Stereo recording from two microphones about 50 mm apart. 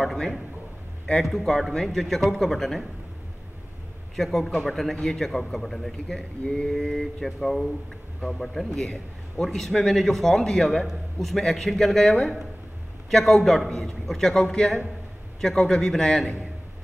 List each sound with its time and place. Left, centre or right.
0.0 s speech: centre
1.3 s speech: centre
4.2 s a man's voice: centre
6.4 s a sound: left
6.7 s a man's voice: centre